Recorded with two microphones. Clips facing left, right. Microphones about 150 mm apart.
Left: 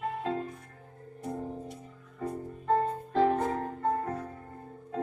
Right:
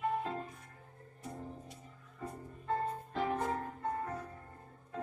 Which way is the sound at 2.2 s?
80° left.